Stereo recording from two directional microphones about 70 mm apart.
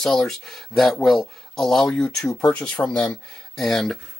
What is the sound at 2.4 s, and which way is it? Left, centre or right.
Speech, centre.